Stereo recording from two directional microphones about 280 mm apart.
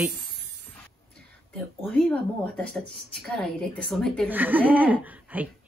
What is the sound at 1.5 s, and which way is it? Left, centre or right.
Speech, centre.